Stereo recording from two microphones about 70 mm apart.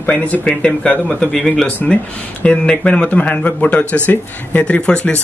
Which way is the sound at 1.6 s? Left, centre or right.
Left.